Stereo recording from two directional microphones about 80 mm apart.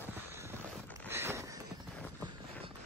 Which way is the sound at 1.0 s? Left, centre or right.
Right.